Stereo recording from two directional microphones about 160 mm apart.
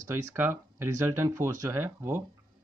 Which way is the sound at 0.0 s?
20° right (ahead or behind).